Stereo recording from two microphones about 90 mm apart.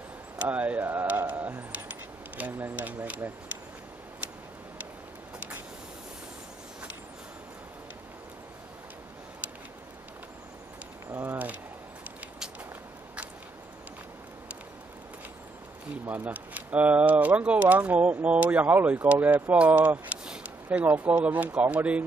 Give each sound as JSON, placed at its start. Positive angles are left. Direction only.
{"t": 0.4, "sound": "speech", "side_deg": -15}
{"t": 11.1, "sound": "speech", "side_deg": -25}
{"t": 16.1, "sound": "speech", "side_deg": -20}